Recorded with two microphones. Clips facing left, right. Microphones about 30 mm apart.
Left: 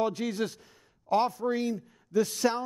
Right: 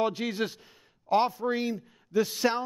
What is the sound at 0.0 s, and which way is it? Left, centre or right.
Speech, right.